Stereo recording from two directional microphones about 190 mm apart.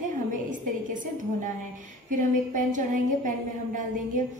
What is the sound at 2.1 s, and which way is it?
Speech, 45° right (ahead or behind).